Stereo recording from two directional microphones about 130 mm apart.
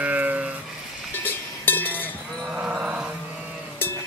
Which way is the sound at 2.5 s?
5° right (ahead or behind).